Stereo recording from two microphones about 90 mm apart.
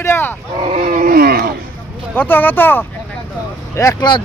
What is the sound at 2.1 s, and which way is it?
Speech, 20° left (ahead or behind).